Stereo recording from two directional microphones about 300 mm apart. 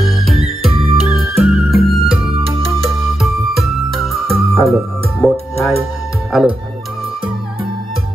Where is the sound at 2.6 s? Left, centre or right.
Centre.